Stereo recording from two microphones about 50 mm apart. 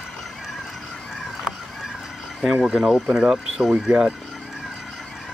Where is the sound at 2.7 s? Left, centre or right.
Centre.